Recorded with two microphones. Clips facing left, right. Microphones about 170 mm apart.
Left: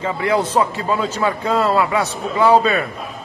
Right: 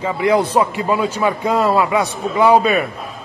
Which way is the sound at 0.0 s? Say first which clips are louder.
Right 3 dB; 15° right (ahead or behind).